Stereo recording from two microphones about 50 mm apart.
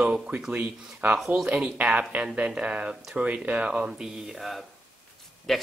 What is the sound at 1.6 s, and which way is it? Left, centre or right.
Speech, right.